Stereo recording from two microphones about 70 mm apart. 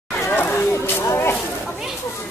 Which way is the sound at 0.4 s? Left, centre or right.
Left.